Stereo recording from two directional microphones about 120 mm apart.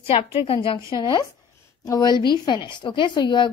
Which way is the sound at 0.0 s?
45° left (ahead or behind).